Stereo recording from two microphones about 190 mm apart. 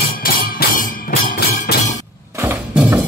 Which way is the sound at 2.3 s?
10° right (ahead or behind).